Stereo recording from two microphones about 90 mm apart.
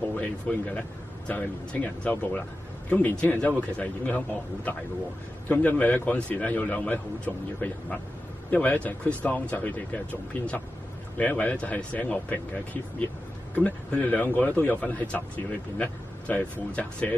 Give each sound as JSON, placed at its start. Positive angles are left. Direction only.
{"t": 0.1, "sound": "speech", "side_deg": 15}
{"t": 5.5, "sound": "speech", "side_deg": 20}
{"t": 13.6, "sound": "speech", "side_deg": 15}